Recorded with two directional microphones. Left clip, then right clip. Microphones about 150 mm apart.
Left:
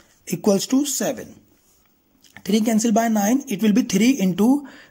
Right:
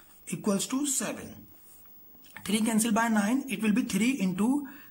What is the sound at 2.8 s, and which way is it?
Speech, 30° left (ahead or behind).